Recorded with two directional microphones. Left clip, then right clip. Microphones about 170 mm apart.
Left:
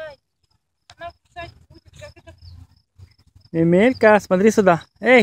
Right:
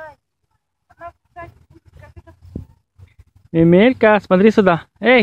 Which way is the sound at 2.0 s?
35° left (ahead or behind).